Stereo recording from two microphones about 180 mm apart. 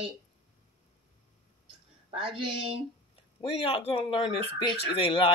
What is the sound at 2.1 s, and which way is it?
Speech, 30° right (ahead or behind).